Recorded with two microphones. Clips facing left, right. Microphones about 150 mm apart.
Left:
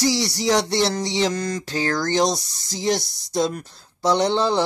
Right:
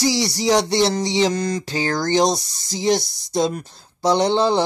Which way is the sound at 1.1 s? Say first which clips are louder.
Right 3 dB; centre (ahead or behind).